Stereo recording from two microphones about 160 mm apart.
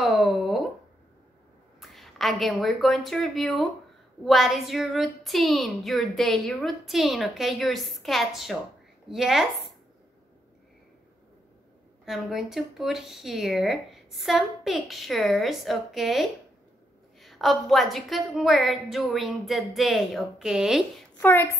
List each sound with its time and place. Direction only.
0.0 s a sound: centre (ahead or behind)
1.8 s a woman's voice: centre (ahead or behind)
12.0 s a woman's voice: centre (ahead or behind)
21.2 s a woman's voice: 15° left (ahead or behind)